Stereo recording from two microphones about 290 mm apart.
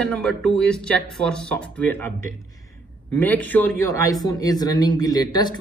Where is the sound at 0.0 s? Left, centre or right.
Centre.